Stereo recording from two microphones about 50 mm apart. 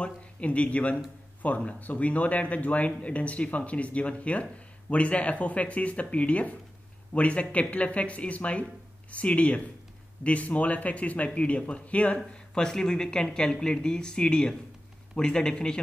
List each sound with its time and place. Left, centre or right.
0.0 s speech: left
12.5 s speech: centre